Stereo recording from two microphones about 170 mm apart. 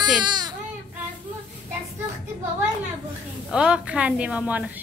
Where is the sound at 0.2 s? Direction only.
25° right (ahead or behind).